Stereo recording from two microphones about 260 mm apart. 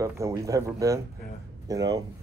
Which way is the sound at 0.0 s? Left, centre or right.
Centre.